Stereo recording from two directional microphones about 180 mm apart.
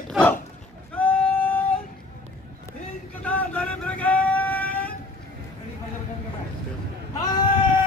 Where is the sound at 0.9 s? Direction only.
5° left (ahead or behind).